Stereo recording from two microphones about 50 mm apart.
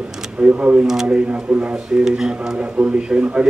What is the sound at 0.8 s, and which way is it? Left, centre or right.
Speech, centre.